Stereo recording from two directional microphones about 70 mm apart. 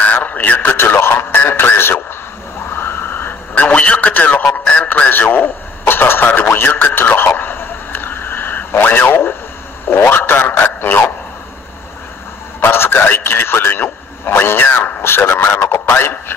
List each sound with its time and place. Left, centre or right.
0.0 s radio: left
2.7 s a sound: left
4.6 s radio: centre
12.5 s a man's voice: left